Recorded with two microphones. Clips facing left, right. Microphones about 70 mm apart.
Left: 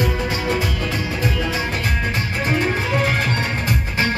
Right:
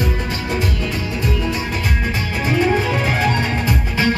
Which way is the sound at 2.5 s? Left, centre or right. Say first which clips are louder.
Right 4 dB; left.